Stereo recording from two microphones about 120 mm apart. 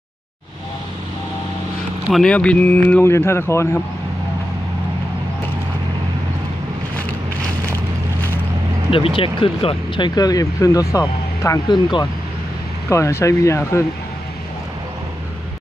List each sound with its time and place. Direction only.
2.0 s speech: centre (ahead or behind)
2.3 s speech: 10° left (ahead or behind)
8.9 s speech: 50° left (ahead or behind); by 11.6 s 25° left (ahead or behind)
11.7 s speech: 40° left (ahead or behind)
12.9 s speech: 25° left (ahead or behind)